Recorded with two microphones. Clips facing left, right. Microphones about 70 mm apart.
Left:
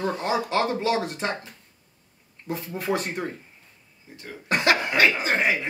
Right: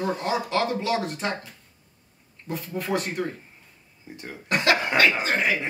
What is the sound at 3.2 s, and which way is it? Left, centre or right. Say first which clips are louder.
Speech: right 2 dB; left.